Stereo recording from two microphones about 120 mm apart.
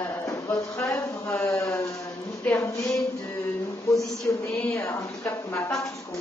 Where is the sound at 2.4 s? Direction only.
20° left (ahead or behind).